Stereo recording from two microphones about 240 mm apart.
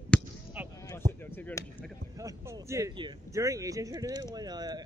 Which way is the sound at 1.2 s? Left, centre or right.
Centre.